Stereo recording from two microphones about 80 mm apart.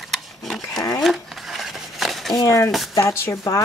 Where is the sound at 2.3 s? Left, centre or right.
Left.